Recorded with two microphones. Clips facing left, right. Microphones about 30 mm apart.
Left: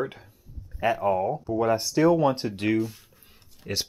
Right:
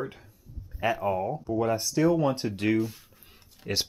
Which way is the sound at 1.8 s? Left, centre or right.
Left.